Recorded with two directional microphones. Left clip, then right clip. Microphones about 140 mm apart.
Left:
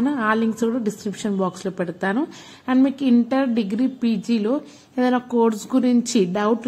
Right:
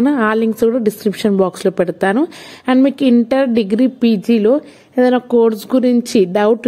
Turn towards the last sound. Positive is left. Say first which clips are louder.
# right 8 dB
turn(degrees=-45)  # may be behind; listen again after turning